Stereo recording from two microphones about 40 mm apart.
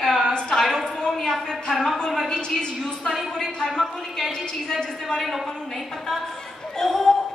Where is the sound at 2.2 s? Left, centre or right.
Centre.